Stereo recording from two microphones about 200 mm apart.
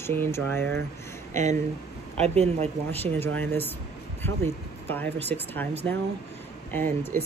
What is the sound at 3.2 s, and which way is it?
Speech, 10° left (ahead or behind).